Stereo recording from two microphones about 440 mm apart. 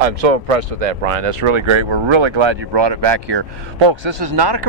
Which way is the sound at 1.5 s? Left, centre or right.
Right.